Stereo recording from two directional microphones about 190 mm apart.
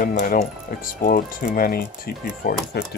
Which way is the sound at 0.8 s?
45° left (ahead or behind).